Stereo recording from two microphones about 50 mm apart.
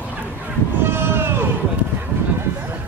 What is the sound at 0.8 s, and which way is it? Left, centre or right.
Vehicle, right.